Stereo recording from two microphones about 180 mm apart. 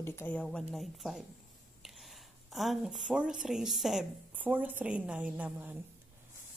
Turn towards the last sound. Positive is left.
turn(degrees=-10)  # may be behind; listen again after turning